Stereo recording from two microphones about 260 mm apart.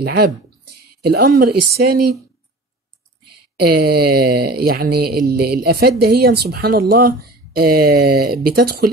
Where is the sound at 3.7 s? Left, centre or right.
Right.